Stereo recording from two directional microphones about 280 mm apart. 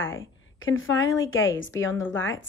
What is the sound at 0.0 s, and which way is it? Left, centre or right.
A woman's voice, left.